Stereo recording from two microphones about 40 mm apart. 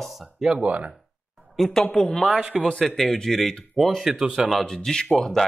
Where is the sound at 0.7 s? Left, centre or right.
Right.